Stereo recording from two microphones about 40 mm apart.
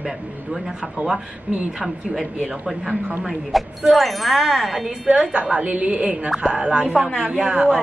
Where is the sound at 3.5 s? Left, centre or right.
Centre.